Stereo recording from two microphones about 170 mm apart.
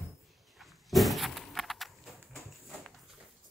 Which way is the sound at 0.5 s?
Centre (ahead or behind).